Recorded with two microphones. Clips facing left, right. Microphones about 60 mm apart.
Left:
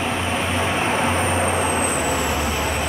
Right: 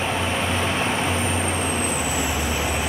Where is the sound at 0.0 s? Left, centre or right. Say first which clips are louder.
Left 1 dB; centre.